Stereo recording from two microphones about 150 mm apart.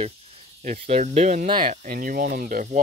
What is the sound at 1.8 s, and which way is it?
Speech, 70° right (ahead or behind).